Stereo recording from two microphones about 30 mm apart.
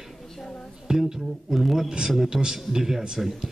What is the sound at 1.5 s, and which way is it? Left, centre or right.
Speech, centre.